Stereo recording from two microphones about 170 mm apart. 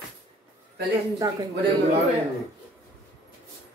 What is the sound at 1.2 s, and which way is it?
Speech, 20° right (ahead or behind).